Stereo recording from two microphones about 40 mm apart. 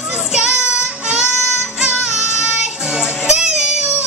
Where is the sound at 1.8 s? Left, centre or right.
Centre.